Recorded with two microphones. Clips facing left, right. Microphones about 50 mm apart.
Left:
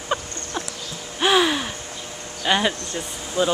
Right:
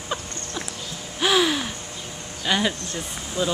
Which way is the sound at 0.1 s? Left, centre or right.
Left.